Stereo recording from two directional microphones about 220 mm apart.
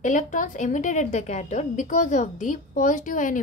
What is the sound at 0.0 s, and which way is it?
A woman's voice, 35° left (ahead or behind).